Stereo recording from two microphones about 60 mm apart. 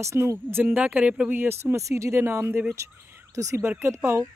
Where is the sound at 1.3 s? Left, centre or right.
Right.